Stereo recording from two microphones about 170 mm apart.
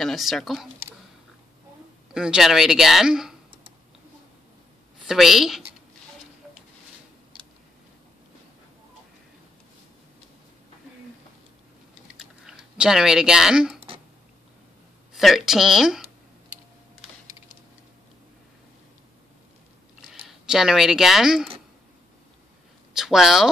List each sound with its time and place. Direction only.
0.0 s speech: centre (ahead or behind)
2.1 s speech: 5° right (ahead or behind)
5.0 s speech: centre (ahead or behind)
12.2 s typing: 5° right (ahead or behind)
13.7 s throat clearing: 35° right (ahead or behind)
15.1 s speech: centre (ahead or behind)
20.1 s speech: centre (ahead or behind)
22.9 s speech: centre (ahead or behind)